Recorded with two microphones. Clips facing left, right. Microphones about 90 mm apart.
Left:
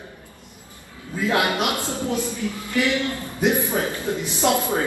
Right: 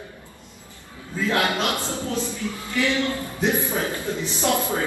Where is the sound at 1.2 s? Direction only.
15° left (ahead or behind).